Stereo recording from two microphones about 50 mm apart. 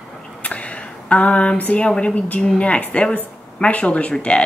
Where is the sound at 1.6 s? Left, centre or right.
Left.